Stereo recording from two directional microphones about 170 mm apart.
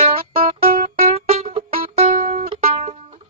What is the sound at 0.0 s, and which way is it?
Music, 35° right (ahead or behind).